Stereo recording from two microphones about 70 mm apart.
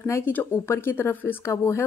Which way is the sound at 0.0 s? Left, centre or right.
Left.